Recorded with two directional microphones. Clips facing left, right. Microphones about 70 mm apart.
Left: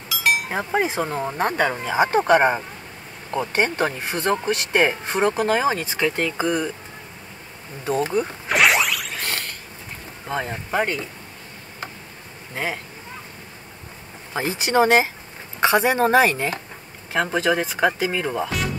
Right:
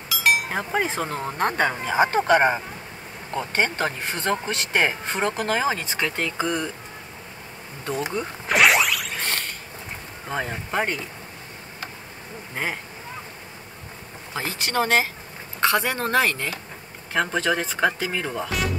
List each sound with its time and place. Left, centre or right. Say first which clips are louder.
0.1 s speech: even; centre
8.5 s whoosh: right 1 dB; centre
10.2 s speech: left 2 dB; centre
14.3 s a woman's voice: left 5 dB; left
17.2 s speech: left 2 dB; centre